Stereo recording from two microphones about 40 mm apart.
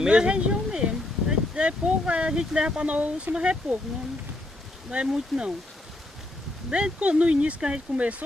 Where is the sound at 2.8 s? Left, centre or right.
Right.